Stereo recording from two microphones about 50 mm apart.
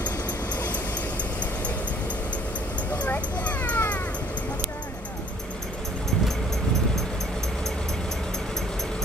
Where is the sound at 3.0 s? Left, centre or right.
Left.